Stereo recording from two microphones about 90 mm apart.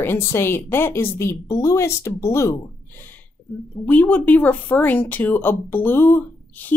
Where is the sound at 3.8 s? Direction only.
15° left (ahead or behind).